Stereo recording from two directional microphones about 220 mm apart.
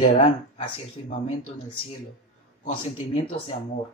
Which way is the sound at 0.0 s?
30° left (ahead or behind).